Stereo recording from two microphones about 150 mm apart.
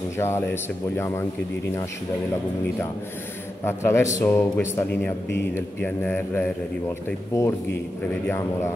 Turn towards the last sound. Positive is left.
turn(degrees=15)  # may be behind; listen again after turning